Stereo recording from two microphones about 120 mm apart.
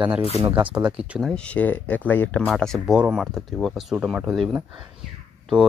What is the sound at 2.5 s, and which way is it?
Speech, centre (ahead or behind).